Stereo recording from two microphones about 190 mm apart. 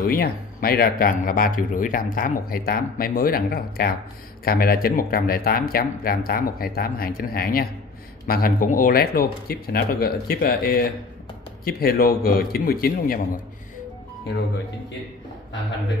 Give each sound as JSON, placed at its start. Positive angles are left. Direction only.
{"t": 0.0, "sound": "speech", "side_deg": 50}